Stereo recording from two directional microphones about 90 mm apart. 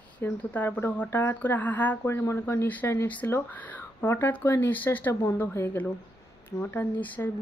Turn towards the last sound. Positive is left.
turn(degrees=20)  # may be behind; listen again after turning